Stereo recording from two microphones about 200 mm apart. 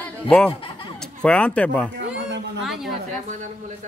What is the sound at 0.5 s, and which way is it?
Snicker, 25° left (ahead or behind).